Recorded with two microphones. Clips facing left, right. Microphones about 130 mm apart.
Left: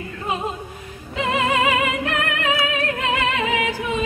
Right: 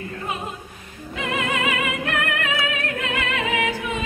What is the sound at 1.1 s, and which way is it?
Music, 30° left (ahead or behind).